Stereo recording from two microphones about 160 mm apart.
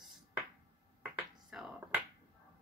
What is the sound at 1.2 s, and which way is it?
Finger snapping, 5° right (ahead or behind).